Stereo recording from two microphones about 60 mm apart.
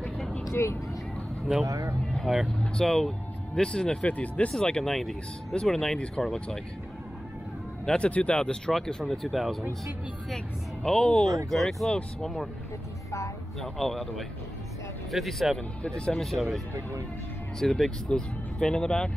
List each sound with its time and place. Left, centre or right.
0.5 s speech: left
1.7 s speech: right
2.3 s speech: centre; by 4.6 s left
4.6 s speech: centre
7.8 s speech: centre
8.7 s speech: centre
10.3 s speech: centre
11.5 s speech: centre
13.6 s speech: centre
15.8 s speech: centre
17.6 s speech: centre
18.0 s speech: centre